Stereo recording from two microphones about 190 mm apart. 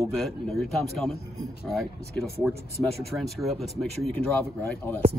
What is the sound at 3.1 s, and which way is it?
Speech, centre (ahead or behind).